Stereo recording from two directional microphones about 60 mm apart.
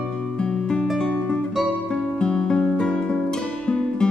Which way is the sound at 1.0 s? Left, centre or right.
Centre.